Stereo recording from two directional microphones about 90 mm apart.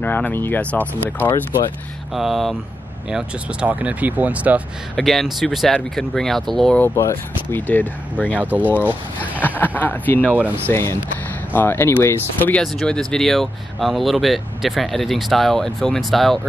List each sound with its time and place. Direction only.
0.0 s speech: 20° left (ahead or behind)
2.1 s speech: centre (ahead or behind)
3.6 s speech: 15° right (ahead or behind)
4.9 s speech: centre (ahead or behind)
6.8 s speech: 30° left (ahead or behind)
7.5 s speech: 20° left (ahead or behind)
8.4 s speech: 15° right (ahead or behind)
9.4 s speech: 20° left (ahead or behind)
10.2 s speech: 15° right (ahead or behind)
10.7 s speech: 30° left (ahead or behind)
12.7 s speech: 10° left (ahead or behind)